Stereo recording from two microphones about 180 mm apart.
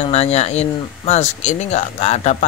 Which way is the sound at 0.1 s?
35° left (ahead or behind).